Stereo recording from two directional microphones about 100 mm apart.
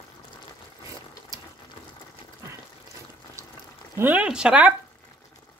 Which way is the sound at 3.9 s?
20° right (ahead or behind).